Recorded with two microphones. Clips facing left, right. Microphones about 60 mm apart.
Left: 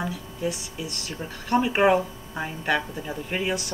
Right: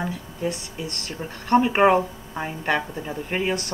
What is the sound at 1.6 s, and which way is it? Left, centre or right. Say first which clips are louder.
Speech: right 1 dB; centre.